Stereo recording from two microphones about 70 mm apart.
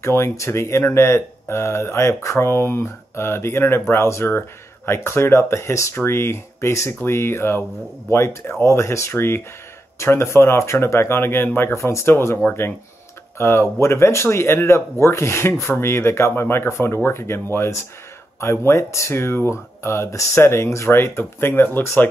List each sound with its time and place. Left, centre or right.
0.0 s speech: left
13.4 s speech: left